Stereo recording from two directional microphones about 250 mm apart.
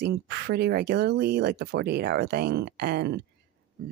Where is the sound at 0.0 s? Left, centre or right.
Right.